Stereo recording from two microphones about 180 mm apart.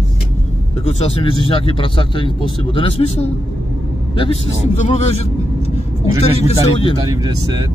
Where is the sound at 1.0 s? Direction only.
30° left (ahead or behind).